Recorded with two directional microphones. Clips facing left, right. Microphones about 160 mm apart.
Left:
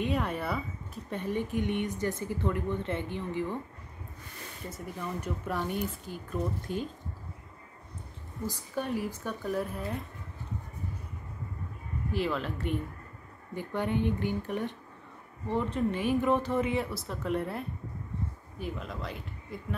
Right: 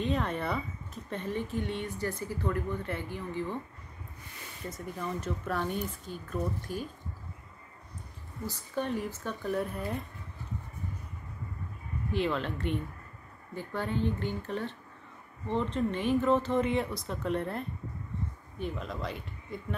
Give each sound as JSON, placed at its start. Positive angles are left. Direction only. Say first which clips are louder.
{"t": 0.0, "sound": "speech", "louder": "even", "side_deg": 10}
{"t": 5.2, "sound": "speech", "louder": "even", "side_deg": 15}
{"t": 6.7, "sound": "speech", "louder": "left 3 dB", "side_deg": 20}
{"t": 8.5, "sound": "speech", "louder": "even", "side_deg": 10}
{"t": 12.1, "sound": "speech", "louder": "right 1 dB", "side_deg": 5}
{"t": 13.6, "sound": "speech", "louder": "left 2 dB", "side_deg": 15}